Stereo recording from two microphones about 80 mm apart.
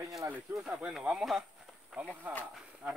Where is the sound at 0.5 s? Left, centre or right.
Centre.